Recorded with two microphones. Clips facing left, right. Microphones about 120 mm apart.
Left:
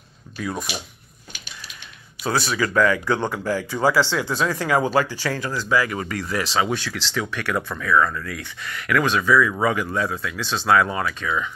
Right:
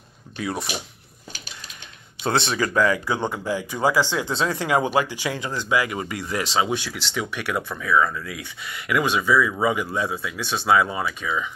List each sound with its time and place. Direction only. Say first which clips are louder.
2.2 s speech: even; 25° right (ahead or behind)